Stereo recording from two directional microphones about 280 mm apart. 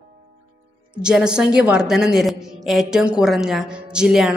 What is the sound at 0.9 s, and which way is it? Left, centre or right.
A woman's voice, centre.